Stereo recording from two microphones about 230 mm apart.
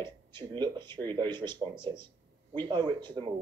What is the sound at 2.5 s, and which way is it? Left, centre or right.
Speech, centre.